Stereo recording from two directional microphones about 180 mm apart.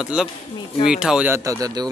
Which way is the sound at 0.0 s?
5° right (ahead or behind).